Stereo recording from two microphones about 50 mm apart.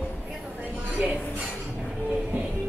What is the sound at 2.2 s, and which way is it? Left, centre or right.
Music, right.